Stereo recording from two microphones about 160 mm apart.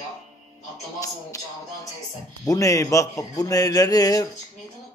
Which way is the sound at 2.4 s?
20° left (ahead or behind).